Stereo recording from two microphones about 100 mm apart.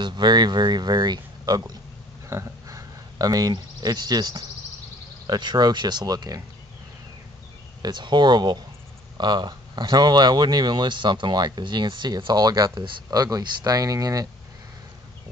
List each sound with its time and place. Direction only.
0.0 s speech: 50° right (ahead or behind)
2.2 s speech: 30° right (ahead or behind)
7.8 s speech: 50° right (ahead or behind)